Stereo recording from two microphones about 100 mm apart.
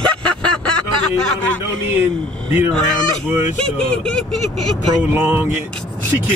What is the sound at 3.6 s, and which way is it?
Speech, 10° left (ahead or behind).